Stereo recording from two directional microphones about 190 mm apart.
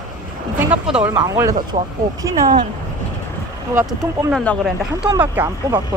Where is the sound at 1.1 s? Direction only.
15° right (ahead or behind).